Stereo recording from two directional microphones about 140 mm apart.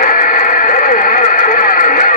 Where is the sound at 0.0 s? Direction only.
70° left (ahead or behind).